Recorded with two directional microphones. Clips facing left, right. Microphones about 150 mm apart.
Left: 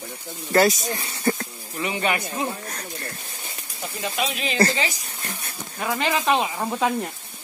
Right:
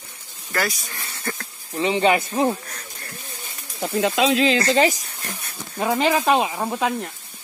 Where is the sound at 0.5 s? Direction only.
25° left (ahead or behind).